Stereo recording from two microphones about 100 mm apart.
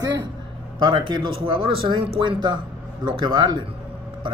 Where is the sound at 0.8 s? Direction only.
50° right (ahead or behind).